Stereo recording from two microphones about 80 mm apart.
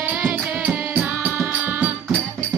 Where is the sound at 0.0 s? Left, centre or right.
Right.